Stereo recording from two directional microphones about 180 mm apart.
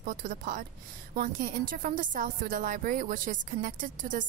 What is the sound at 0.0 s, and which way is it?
A woman's voice, 45° right (ahead or behind).